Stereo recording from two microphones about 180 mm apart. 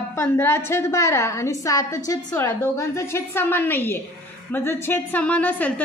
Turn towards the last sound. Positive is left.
turn(degrees=10)  # may be behind; listen again after turning